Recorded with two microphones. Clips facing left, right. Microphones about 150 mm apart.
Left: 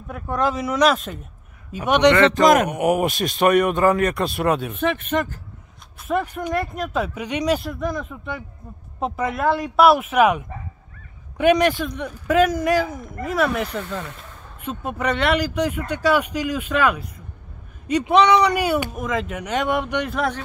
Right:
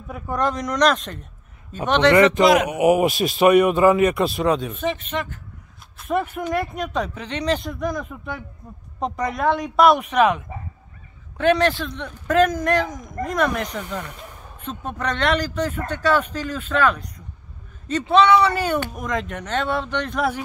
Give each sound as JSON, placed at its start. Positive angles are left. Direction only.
{"t": 0.1, "sound": "speech", "side_deg": 0}
{"t": 2.4, "sound": "speech", "side_deg": 50}
{"t": 2.7, "sound": "speech", "side_deg": -5}
{"t": 4.7, "sound": "speech", "side_deg": 55}
{"t": 5.9, "sound": "speech", "side_deg": 0}
{"t": 13.7, "sound": "speech", "side_deg": -10}
{"t": 14.6, "sound": "speech", "side_deg": 10}
{"t": 20.2, "sound": "speech", "side_deg": -5}